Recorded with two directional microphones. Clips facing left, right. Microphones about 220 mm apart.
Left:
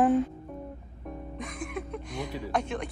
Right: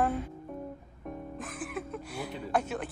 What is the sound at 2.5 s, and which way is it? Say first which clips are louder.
Speech: even; 5° right (ahead or behind).